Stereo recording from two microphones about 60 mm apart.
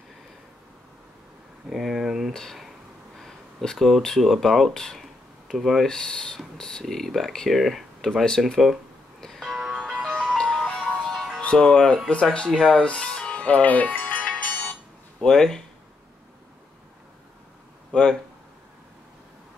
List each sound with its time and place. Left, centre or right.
1.7 s a sound: centre
2.3 s speech: centre
5.9 s speech: centre
9.2 s music: centre
10.5 s music: centre
11.4 s speech: centre
12.5 s music: centre
15.1 s speech: centre